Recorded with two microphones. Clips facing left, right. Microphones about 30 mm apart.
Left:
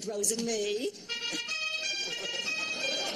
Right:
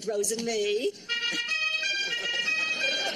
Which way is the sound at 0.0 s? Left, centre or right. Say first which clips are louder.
Right 4 dB; right.